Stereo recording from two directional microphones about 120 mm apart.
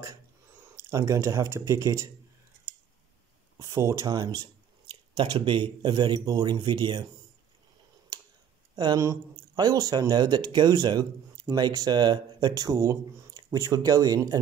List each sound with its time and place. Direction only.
0.7 s speech: 25° right (ahead or behind)
3.5 s speech: 35° right (ahead or behind)
4.8 s speech: 45° right (ahead or behind)
8.7 s speech: 30° right (ahead or behind)